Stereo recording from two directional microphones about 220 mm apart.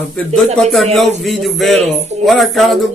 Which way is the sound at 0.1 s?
5° left (ahead or behind).